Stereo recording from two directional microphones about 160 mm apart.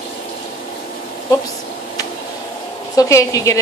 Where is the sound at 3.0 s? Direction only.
20° left (ahead or behind).